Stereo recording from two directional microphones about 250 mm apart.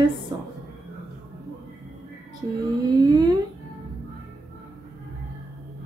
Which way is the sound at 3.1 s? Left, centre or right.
Centre.